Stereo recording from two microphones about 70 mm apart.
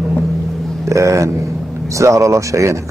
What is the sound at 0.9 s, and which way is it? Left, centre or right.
Speech, right.